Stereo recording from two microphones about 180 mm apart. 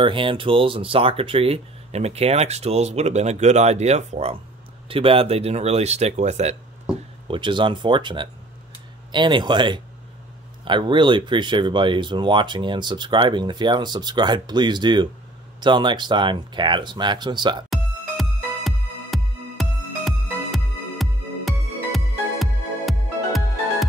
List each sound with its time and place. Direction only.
0.0 s speech: 30° right (ahead or behind)
7.2 s speech: 25° right (ahead or behind)
17.6 s music: centre (ahead or behind)